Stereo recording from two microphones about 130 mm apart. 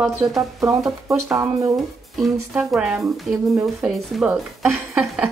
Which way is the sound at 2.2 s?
5° right (ahead or behind).